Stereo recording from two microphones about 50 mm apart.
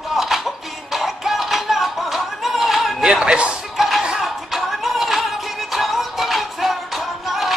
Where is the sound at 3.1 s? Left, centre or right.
Centre.